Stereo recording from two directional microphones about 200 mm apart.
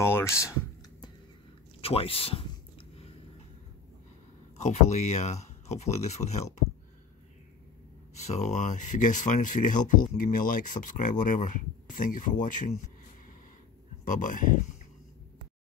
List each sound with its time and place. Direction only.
0.0 s speech: 15° left (ahead or behind)
1.8 s a man's voice: 30° left (ahead or behind)
4.6 s speech: 35° left (ahead or behind)
8.1 s speech: 35° left (ahead or behind)
14.0 s speech: 40° left (ahead or behind)